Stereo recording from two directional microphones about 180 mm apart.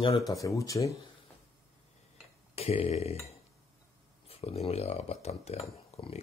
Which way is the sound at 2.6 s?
35° left (ahead or behind).